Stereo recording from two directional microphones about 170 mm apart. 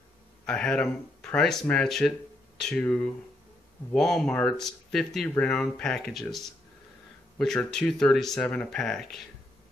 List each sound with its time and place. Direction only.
0.5 s speech: 5° left (ahead or behind)